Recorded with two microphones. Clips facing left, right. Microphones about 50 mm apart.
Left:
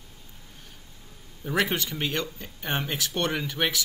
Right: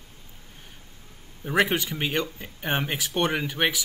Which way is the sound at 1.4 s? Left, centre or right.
Centre.